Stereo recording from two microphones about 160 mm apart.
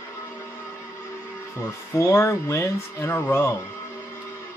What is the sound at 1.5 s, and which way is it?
Speech, 15° left (ahead or behind).